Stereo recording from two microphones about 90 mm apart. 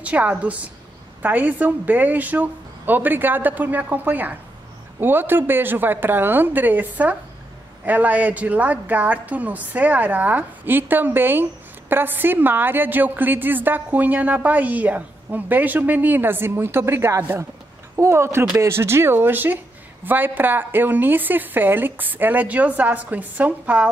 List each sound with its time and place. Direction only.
0.0 s a woman's voice: 15° right (ahead or behind)